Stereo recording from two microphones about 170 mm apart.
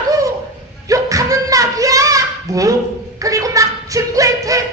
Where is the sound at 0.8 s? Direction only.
20° right (ahead or behind).